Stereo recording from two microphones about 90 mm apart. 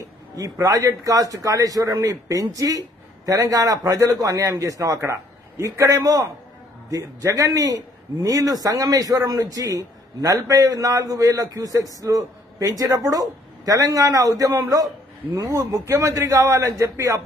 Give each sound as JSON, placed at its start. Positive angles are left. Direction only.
{"t": 0.4, "sound": "a man's voice", "side_deg": -40}